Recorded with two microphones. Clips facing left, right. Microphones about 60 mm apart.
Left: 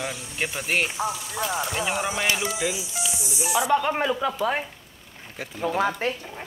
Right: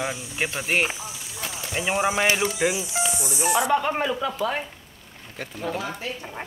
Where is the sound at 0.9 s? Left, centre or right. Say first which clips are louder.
Left 9 dB; left.